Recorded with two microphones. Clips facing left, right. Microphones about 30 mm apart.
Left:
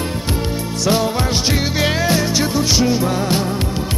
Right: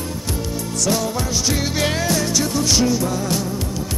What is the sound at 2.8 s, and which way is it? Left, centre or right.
Music, left.